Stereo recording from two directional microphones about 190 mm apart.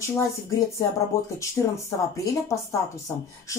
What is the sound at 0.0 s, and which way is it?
Speech, 15° left (ahead or behind).